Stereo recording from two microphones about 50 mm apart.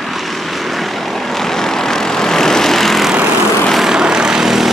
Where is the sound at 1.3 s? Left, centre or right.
Centre.